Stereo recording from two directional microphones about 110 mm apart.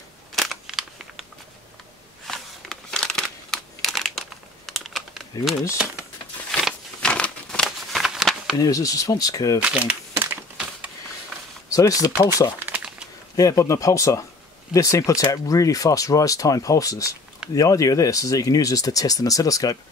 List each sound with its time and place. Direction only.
0.4 s a sound: centre (ahead or behind)
2.2 s crumpling: 5° left (ahead or behind)
4.6 s typing: centre (ahead or behind)
6.5 s a sound: 10° left (ahead or behind)
8.5 s speech: 30° left (ahead or behind)
9.6 s speech: 10° right (ahead or behind)
11.7 s speech: 30° left (ahead or behind)
12.5 s crumpling: 15° right (ahead or behind)
13.4 s speech: 30° left (ahead or behind)